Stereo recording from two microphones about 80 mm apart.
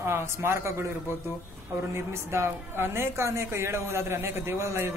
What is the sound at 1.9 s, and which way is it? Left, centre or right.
A woman's voice, right.